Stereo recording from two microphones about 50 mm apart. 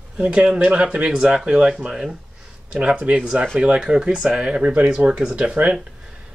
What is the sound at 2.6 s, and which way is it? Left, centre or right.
Speech, right.